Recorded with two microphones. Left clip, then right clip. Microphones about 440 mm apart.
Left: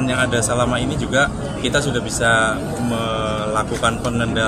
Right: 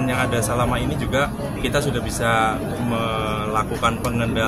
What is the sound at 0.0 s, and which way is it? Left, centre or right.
Speech, right.